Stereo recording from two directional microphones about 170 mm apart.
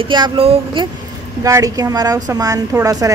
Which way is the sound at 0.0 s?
30° right (ahead or behind).